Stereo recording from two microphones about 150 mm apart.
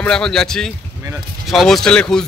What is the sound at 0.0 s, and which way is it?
Speech, 5° left (ahead or behind).